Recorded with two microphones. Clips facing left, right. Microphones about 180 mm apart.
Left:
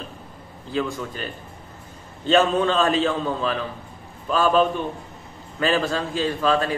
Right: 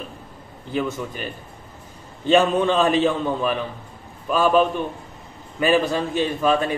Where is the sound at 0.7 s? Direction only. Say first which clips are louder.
Right 1 dB; 15° right (ahead or behind).